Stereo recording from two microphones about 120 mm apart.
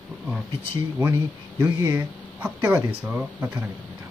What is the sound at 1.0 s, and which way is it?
Speech, 20° right (ahead or behind).